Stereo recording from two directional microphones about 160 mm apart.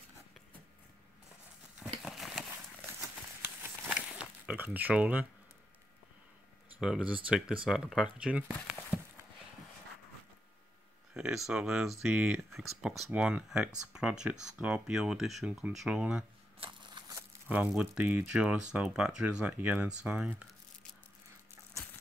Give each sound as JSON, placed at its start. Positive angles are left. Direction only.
{"t": 2.0, "sound": "a sound", "side_deg": 0}
{"t": 2.9, "sound": "a sound", "side_deg": -15}
{"t": 6.8, "sound": "speech", "side_deg": -5}
{"t": 11.1, "sound": "speech", "side_deg": -5}
{"t": 16.5, "sound": "shuffling cards", "side_deg": -30}
{"t": 17.5, "sound": "speech", "side_deg": -10}